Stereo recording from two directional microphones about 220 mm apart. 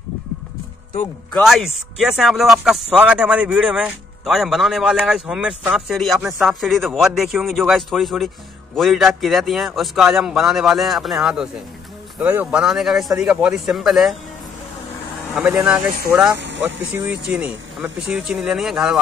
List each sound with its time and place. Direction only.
1.3 s speech: centre (ahead or behind)
15.3 s speech: 5° right (ahead or behind)
16.3 s speech: 50° right (ahead or behind)
16.9 s speech: 5° right (ahead or behind)